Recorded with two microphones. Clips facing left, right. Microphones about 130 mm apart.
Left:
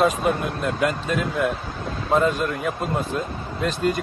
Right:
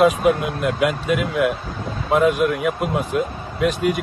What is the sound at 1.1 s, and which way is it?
Speech, 65° right (ahead or behind).